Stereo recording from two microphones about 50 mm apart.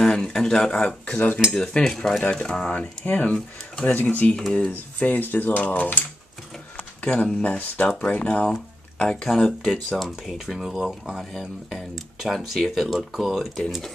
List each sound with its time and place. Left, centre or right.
0.0 s speech: centre
1.5 s cutlery: centre
2.2 s speech: centre
3.9 s speech: left
6.8 s a sound: left
7.4 s speech: left
9.6 s speech: centre
10.3 s speech: centre